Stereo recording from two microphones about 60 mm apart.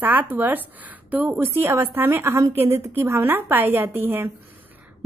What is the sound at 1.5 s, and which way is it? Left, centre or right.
A woman's voice, right.